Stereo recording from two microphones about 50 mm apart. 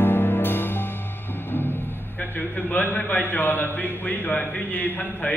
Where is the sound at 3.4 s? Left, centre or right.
Left.